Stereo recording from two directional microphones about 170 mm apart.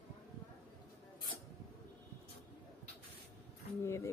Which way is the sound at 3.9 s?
15° left (ahead or behind).